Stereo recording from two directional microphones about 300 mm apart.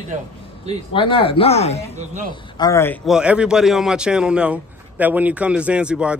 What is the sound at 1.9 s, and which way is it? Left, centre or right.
Speech, right.